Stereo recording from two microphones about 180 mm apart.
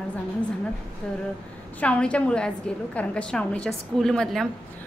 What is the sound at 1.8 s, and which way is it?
A woman's voice, 5° left (ahead or behind).